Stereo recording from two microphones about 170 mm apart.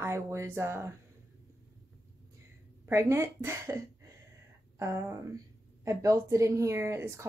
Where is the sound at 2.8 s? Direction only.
15° right (ahead or behind).